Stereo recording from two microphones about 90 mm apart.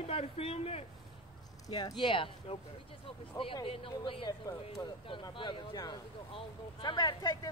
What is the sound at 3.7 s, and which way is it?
Speech, 90° left.